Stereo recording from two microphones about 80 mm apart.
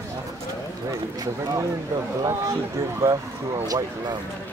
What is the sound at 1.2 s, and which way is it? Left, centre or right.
Speech, right.